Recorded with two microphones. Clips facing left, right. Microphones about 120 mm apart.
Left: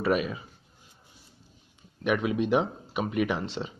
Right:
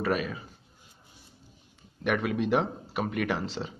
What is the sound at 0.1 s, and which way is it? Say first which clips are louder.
Speech: left 5 dB; 15° left (ahead or behind).